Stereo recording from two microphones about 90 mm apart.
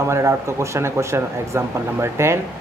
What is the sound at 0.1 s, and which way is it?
Speech, 30° right (ahead or behind).